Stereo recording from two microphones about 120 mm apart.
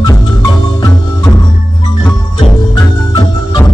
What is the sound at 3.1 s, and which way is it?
Music, 35° left (ahead or behind).